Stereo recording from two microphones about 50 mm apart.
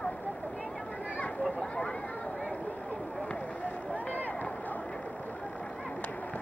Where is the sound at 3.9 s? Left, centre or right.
Left.